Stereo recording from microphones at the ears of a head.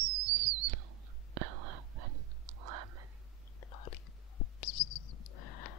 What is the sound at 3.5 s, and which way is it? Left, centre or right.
Whispering, left.